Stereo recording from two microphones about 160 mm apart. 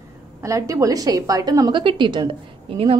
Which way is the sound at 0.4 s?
20° right (ahead or behind).